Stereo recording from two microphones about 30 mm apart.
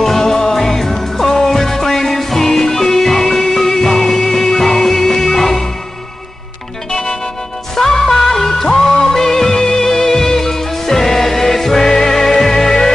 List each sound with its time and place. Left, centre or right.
0.0 s music: centre
6.9 s music: centre